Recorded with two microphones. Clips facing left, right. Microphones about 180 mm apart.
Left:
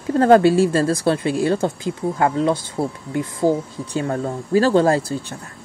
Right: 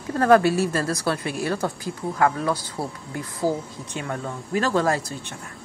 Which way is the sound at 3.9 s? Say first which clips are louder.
Left 8 dB; 35° left (ahead or behind).